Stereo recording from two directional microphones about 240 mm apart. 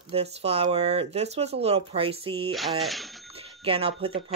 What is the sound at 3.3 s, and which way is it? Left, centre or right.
Speech, right.